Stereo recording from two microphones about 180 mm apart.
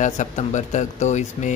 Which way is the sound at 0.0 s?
45° left (ahead or behind).